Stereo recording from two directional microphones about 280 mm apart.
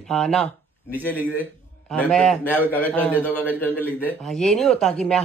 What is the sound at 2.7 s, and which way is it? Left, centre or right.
A man's voice, centre.